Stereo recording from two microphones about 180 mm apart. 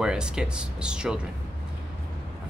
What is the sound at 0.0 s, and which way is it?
Speech, 5° right (ahead or behind).